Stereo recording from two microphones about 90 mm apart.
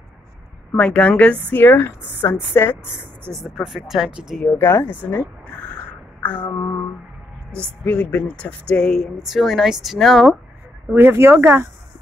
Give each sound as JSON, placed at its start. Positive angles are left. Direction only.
{"t": 0.7, "sound": "a woman's voice", "side_deg": 10}
{"t": 1.6, "sound": "a woman's voice", "side_deg": 25}
{"t": 3.3, "sound": "speech", "side_deg": 0}
{"t": 4.5, "sound": "a woman's voice", "side_deg": 25}
{"t": 6.2, "sound": "a sound", "side_deg": 20}
{"t": 6.5, "sound": "a sound", "side_deg": 35}
{"t": 7.8, "sound": "speech", "side_deg": 15}
{"t": 10.9, "sound": "speech", "side_deg": -25}